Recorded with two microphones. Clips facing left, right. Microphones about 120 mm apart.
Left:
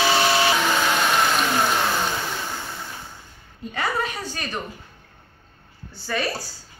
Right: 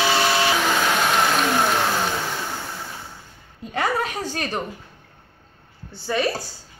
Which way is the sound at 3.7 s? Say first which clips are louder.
Right 3 dB; 70° right (ahead or behind).